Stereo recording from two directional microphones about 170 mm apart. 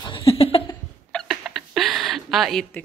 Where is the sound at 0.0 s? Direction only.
30° left (ahead or behind).